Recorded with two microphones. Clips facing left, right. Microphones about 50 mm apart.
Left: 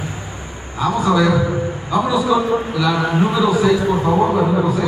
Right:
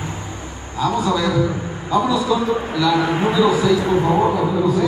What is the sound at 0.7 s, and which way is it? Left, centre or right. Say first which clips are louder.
A man's voice: left 3 dB; centre.